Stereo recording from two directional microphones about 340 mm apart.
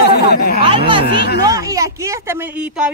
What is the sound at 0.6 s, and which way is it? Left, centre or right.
Speech, centre.